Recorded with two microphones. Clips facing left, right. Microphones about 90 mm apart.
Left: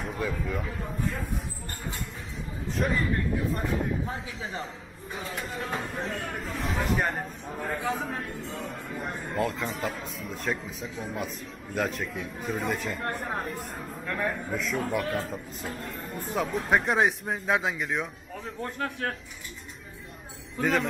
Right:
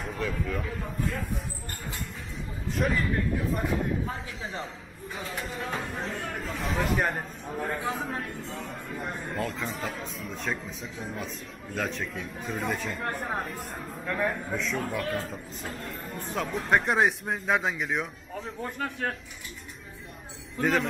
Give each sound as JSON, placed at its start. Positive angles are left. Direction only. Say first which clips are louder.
{"t": 0.0, "sound": "speech", "louder": "even", "side_deg": 5}
{"t": 2.8, "sound": "speech", "louder": "even", "side_deg": 0}
{"t": 4.1, "sound": "speech", "louder": "left 1 dB", "side_deg": 0}
{"t": 20.5, "sound": "a man's voice", "louder": "even", "side_deg": 0}